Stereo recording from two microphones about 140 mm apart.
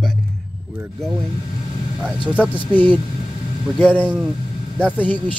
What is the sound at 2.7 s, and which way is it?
Speech, 10° left (ahead or behind).